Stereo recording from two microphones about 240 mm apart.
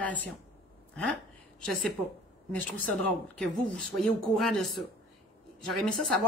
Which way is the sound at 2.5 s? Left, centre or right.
Centre.